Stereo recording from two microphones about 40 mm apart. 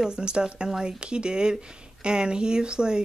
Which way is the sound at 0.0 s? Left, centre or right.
Right.